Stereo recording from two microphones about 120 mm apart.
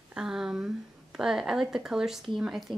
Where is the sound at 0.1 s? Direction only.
5° right (ahead or behind).